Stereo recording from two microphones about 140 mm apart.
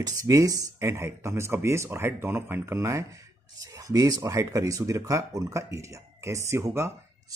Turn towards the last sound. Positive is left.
turn(degrees=-20)  # may be behind; listen again after turning